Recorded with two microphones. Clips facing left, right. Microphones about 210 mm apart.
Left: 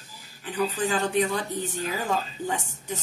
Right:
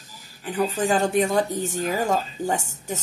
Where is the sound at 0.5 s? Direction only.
45° right (ahead or behind).